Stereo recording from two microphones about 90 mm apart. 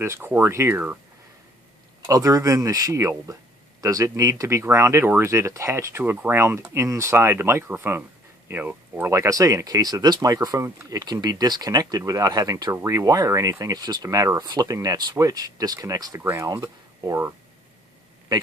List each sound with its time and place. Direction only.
0.0 s speech: 30° right (ahead or behind)
2.0 s speech: 40° right (ahead or behind)
10.6 s speech: 30° right (ahead or behind)
11.0 s speech: 45° right (ahead or behind)
16.2 s speech: 25° right (ahead or behind)
18.3 s a man's voice: 50° right (ahead or behind)